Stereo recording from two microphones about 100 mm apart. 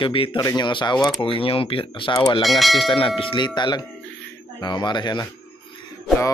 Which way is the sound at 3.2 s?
60° left (ahead or behind).